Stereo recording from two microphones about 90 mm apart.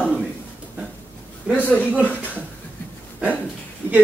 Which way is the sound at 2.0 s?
20° left (ahead or behind).